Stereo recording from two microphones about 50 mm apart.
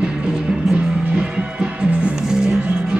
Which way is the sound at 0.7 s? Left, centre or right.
Right.